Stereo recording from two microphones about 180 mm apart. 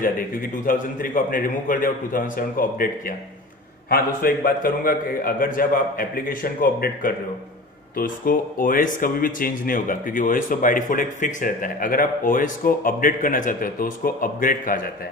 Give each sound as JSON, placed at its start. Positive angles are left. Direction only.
{"t": 0.7, "sound": "speech", "side_deg": 50}